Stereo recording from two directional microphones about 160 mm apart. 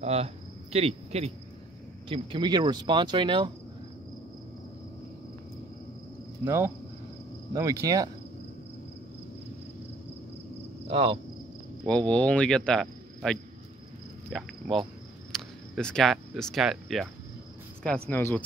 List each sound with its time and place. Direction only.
0.0 s speech: 40° right (ahead or behind)
6.4 s speech: 15° right (ahead or behind)
10.9 s cricket: 35° right (ahead or behind)
11.8 s speech: 5° left (ahead or behind)
18.1 s speech: 10° left (ahead or behind)